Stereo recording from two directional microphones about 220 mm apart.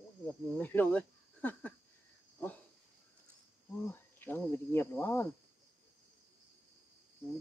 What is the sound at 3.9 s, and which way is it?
Cricket, 10° left (ahead or behind).